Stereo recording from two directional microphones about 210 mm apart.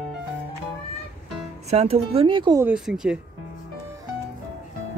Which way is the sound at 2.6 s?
5° right (ahead or behind).